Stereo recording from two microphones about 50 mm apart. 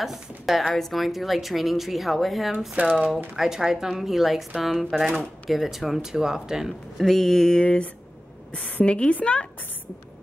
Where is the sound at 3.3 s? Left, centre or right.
Centre.